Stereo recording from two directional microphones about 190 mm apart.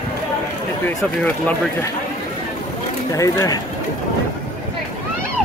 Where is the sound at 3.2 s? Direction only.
20° left (ahead or behind).